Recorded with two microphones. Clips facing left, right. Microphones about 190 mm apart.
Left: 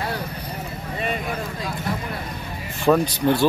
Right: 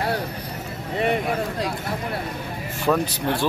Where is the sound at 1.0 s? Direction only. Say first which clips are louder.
Right 5 dB; 65° right (ahead or behind).